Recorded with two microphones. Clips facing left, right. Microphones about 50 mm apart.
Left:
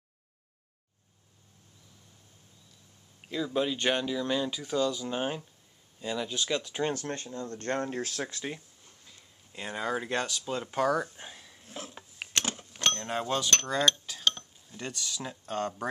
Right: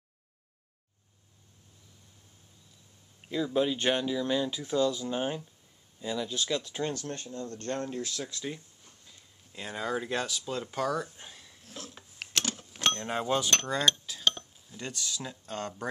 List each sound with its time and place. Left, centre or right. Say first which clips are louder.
3.3 s speech: right 2 dB; centre
6.9 s speech: left 2 dB; left
9.0 s a sound: left 1 dB; centre
12.8 s speech: right 1 dB; centre
14.2 s dishes: even; centre
14.9 s speech: even; left